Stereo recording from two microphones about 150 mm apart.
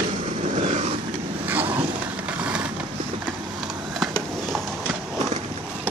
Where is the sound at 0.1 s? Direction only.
45° right (ahead or behind).